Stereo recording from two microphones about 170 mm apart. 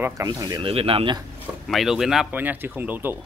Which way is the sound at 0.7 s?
35° right (ahead or behind).